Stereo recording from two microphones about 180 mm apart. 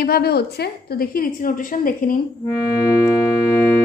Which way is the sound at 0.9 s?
50° left (ahead or behind).